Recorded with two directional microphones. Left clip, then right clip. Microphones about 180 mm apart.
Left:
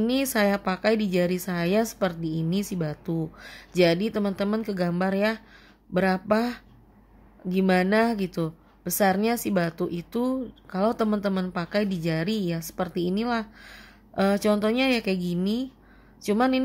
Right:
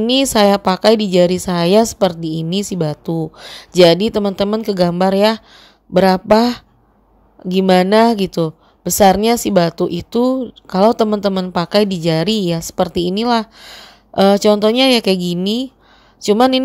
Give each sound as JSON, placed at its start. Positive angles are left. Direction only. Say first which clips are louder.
{"t": 0.0, "sound": "a woman's voice", "louder": "right 11 dB", "side_deg": -35}